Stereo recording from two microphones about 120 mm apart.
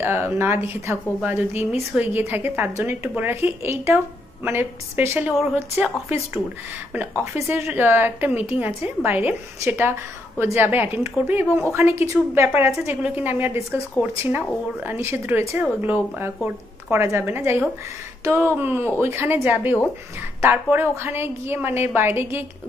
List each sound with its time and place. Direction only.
0.0 s a woman's voice: 20° right (ahead or behind)